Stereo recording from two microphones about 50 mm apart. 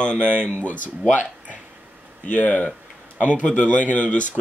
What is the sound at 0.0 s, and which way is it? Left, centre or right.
Speech, centre.